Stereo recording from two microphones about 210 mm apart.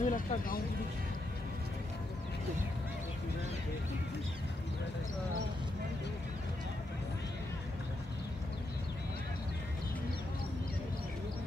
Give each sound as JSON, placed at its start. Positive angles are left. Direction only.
{"t": 0.0, "sound": "speech", "side_deg": 40}